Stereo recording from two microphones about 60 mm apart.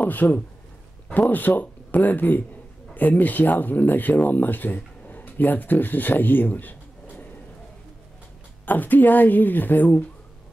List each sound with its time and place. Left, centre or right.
0.0 s speech: left
8.6 s speech: left